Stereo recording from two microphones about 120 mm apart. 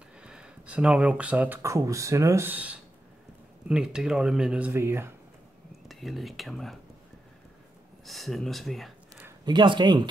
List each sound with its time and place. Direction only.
0.2 s speech: 10° right (ahead or behind)
1.6 s speech: 25° right (ahead or behind)
5.9 s speech: centre (ahead or behind)
8.0 s speech: centre (ahead or behind)
9.5 s speech: 40° right (ahead or behind)